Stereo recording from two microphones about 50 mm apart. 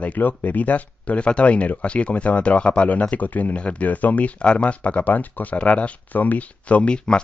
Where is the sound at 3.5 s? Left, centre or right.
Left.